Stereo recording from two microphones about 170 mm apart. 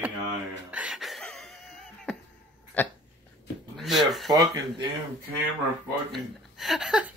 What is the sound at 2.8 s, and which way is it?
Dog, 10° left (ahead or behind).